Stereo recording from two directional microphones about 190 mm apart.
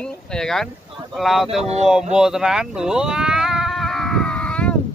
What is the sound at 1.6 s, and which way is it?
Speech, 35° right (ahead or behind).